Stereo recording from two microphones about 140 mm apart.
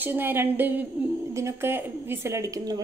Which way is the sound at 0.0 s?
15° right (ahead or behind).